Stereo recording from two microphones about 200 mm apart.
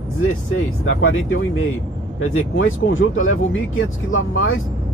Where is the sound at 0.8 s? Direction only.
75° left (ahead or behind).